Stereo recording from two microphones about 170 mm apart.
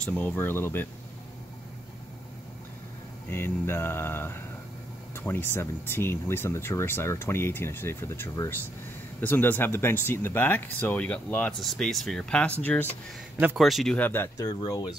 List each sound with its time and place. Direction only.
0.0 s speech: 10° left (ahead or behind)
3.3 s speech: 15° left (ahead or behind)